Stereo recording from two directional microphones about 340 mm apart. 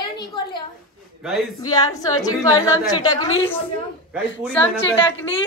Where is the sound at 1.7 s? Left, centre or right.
Centre.